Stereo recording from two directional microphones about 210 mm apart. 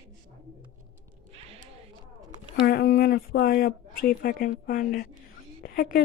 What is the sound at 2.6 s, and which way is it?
Speech, 45° left (ahead or behind).